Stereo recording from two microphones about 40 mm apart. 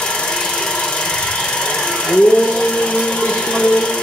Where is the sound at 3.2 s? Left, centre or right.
Centre.